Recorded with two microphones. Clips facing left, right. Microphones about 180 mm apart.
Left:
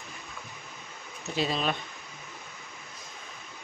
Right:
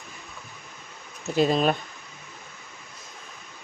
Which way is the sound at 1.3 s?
50° right (ahead or behind).